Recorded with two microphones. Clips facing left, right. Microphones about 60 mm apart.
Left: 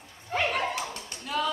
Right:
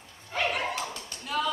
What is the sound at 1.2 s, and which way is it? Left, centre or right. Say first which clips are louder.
Tap: even; centre.